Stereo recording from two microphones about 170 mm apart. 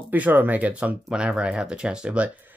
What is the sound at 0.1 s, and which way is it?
Speech, 10° right (ahead or behind).